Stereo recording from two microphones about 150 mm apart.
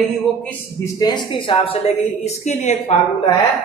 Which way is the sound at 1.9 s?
50° left (ahead or behind).